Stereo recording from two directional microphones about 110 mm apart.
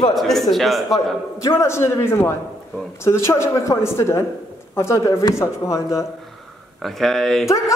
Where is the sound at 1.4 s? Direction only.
25° left (ahead or behind).